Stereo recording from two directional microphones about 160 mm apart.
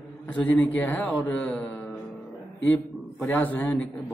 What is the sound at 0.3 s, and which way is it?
A man's voice, 10° left (ahead or behind).